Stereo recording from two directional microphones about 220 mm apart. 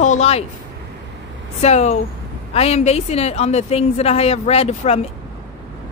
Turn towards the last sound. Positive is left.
turn(degrees=30)  # may be behind; listen again after turning